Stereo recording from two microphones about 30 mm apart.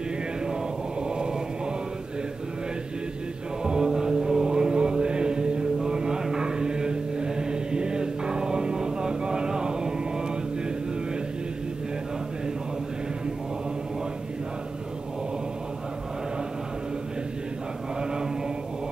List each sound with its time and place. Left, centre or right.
1.0 s a sound: right
3.6 s mantra: right
6.3 s chant: right